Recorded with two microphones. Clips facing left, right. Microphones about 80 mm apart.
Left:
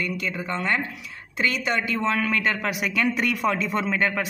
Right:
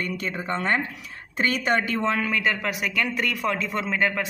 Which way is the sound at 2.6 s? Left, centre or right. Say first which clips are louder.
Left 2 dB; centre.